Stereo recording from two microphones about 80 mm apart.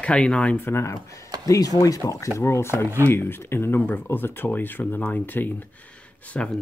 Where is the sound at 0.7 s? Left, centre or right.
Left.